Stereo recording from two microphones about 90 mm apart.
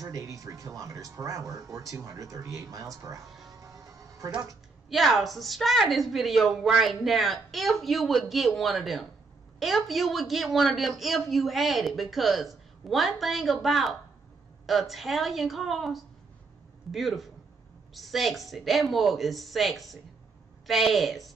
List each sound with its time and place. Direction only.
0.0 s speech: 40° right (ahead or behind)
3.5 s music: 40° right (ahead or behind)
4.8 s a man's voice: centre (ahead or behind)